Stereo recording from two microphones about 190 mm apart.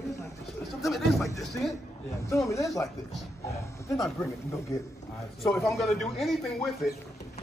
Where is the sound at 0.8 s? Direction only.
Centre (ahead or behind).